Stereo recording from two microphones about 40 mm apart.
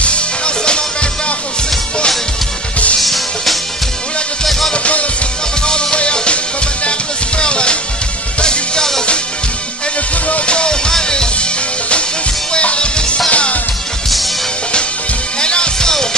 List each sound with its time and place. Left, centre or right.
3.0 s music: centre
5.7 s music: left
10.2 s music: left
12.5 s music: left
15.4 s music: left